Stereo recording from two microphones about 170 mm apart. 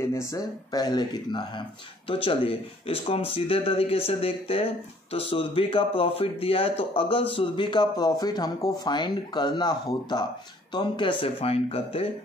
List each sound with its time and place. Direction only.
0.1 s speech: 15° left (ahead or behind); by 12.1 s 35° left (ahead or behind)